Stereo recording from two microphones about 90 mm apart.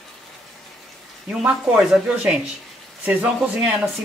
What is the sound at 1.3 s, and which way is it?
Speech, 10° right (ahead or behind).